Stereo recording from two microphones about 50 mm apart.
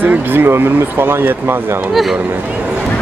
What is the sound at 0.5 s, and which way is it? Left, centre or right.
Speech, right.